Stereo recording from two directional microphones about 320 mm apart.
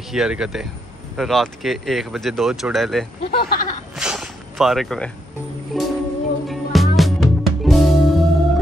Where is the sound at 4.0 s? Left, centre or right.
Centre.